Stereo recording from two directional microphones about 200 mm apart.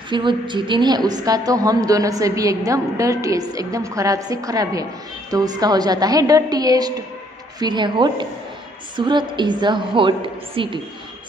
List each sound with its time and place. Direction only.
0.1 s a woman's voice: 25° right (ahead or behind)